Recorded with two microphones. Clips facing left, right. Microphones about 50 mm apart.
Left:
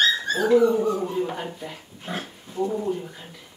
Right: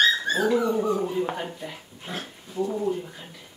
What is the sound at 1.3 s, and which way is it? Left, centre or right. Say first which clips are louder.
Speech: even; centre.